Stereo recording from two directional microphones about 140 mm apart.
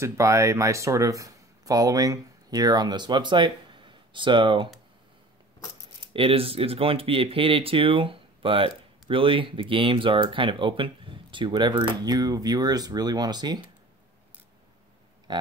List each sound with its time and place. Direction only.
0.0 s speech: 20° right (ahead or behind); by 4.6 s 35° right (ahead or behind)
6.1 s speech: 40° right (ahead or behind)